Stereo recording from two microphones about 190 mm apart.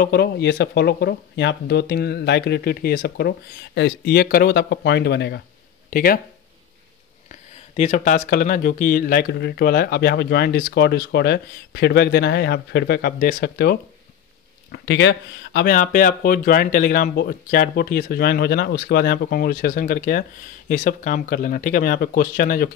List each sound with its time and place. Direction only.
0.0 s speech: 55° left (ahead or behind)
5.9 s speech: 50° left (ahead or behind)
7.2 s speech: 35° left (ahead or behind); by 13.7 s 55° left (ahead or behind)
14.7 s speech: 70° left (ahead or behind); by 22.7 s 50° left (ahead or behind)